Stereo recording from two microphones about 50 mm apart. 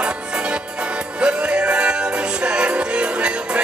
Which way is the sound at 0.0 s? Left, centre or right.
Right.